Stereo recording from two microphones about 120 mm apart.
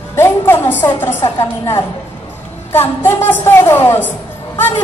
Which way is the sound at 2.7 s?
20° left (ahead or behind).